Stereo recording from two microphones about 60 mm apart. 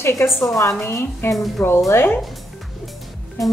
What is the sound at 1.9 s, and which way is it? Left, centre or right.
Speech, left.